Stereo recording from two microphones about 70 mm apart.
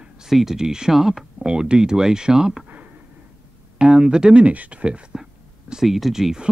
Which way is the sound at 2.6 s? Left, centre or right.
Right.